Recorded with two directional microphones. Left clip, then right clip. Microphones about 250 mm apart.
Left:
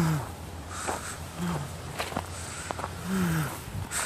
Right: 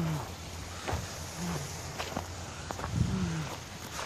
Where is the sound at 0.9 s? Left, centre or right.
Centre.